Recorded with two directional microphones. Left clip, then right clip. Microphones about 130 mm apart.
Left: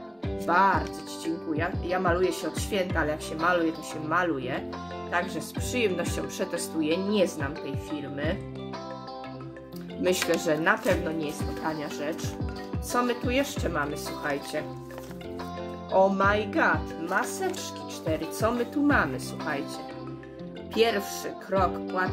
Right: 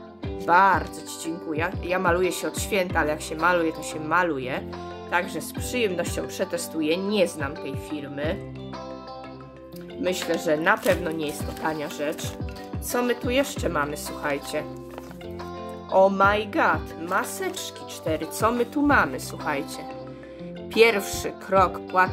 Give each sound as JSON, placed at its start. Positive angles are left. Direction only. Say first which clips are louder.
{"t": 0.5, "sound": "speech", "louder": "right 4 dB", "side_deg": -45}
{"t": 1.5, "sound": "speech", "louder": "right 4 dB", "side_deg": -55}
{"t": 10.0, "sound": "speech", "louder": "even", "side_deg": -10}
{"t": 10.4, "sound": "speech", "louder": "right 3 dB", "side_deg": -30}
{"t": 12.9, "sound": "speech", "louder": "right 3 dB", "side_deg": -40}
{"t": 15.9, "sound": "speech", "louder": "right 4 dB", "side_deg": -40}
{"t": 20.7, "sound": "speech", "louder": "right 6 dB", "side_deg": -60}